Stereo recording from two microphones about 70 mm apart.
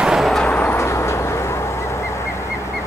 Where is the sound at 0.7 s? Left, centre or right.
Left.